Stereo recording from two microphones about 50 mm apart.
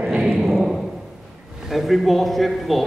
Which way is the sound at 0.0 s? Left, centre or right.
Centre.